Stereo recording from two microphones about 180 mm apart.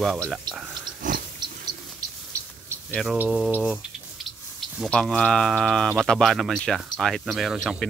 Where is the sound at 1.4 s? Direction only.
20° right (ahead or behind).